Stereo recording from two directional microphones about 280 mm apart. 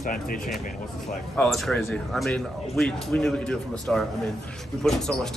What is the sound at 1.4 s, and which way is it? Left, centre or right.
A man's voice, centre.